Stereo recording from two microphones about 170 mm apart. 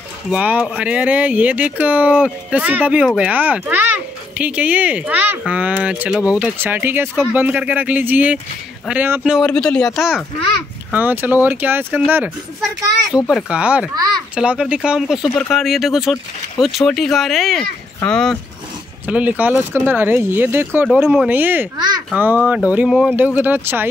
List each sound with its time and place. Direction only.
0.3 s a child's voice: 10° right (ahead or behind)
13.1 s speech: centre (ahead or behind)
19.0 s speech: 10° right (ahead or behind)
21.7 s speech: 25° right (ahead or behind)
22.1 s speech: 10° right (ahead or behind)